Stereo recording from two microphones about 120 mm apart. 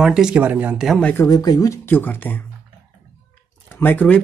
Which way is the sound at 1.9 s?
15° left (ahead or behind).